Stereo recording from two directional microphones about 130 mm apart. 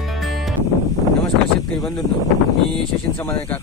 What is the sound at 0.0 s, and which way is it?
Music, centre (ahead or behind).